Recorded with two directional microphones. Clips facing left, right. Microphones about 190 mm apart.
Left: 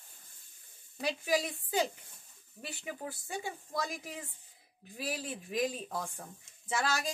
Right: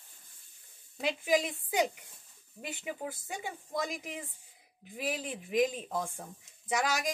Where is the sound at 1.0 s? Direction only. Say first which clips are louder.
Right 3 dB; 20° right (ahead or behind).